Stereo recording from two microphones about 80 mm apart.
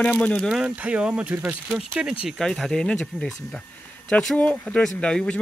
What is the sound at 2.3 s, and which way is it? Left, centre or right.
Speech, centre.